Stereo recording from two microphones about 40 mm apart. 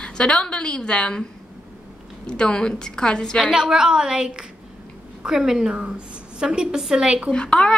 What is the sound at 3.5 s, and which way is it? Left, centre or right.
A woman's voice, centre.